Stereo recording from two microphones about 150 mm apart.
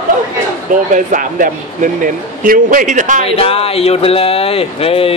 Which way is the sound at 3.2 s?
40° left (ahead or behind).